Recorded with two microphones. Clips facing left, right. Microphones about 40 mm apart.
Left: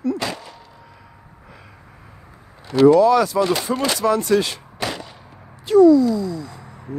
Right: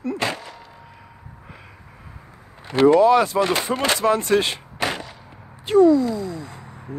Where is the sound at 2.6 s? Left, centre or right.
Right.